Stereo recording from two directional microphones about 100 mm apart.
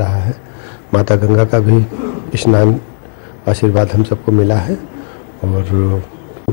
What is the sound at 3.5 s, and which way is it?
Speech, 15° left (ahead or behind).